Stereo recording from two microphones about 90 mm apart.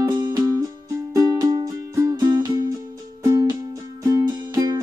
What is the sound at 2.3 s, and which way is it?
Music, 50° right (ahead or behind).